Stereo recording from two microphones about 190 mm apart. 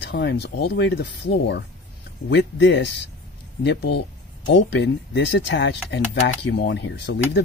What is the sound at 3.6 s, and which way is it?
Speech, 60° left (ahead or behind).